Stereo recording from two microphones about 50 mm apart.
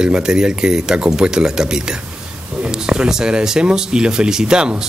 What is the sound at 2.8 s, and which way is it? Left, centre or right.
Speech, centre.